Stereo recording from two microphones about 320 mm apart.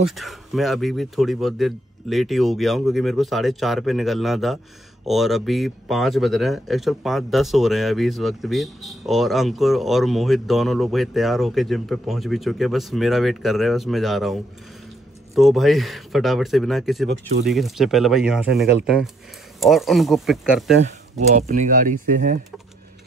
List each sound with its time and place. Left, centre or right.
0.1 s speech: centre
20.8 s speech: right